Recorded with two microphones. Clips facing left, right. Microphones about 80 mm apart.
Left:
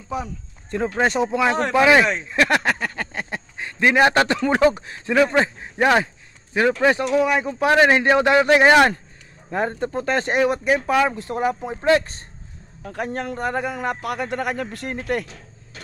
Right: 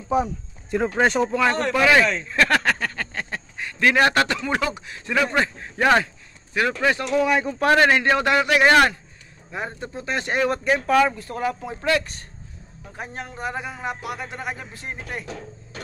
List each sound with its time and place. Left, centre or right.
0.1 s speech: right
0.7 s speech: centre
1.3 s speech: centre
4.6 s speech: left
5.3 s a man's voice: left
7.1 s a man's voice: centre; by 8.9 s left
9.5 s speech: left
10.2 s a man's voice: centre
11.1 s speech: left
12.8 s a man's voice: left